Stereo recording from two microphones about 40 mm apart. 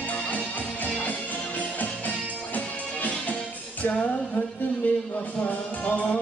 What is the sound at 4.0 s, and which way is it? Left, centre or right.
Music, left.